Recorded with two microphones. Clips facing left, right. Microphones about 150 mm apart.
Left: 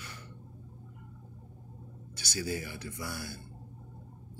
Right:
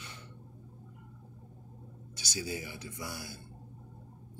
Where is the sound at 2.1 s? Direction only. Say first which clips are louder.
Left 3 dB; 20° right (ahead or behind).